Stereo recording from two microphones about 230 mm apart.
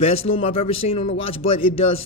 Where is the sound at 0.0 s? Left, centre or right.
Left.